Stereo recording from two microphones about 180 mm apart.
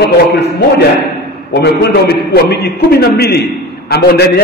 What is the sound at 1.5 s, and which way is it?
A man's voice, 65° left (ahead or behind).